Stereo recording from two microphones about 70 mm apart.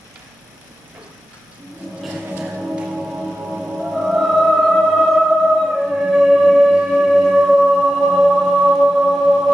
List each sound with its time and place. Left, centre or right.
2.0 s music: right